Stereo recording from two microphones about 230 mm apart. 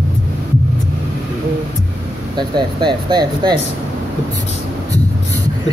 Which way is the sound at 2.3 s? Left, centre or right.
Centre.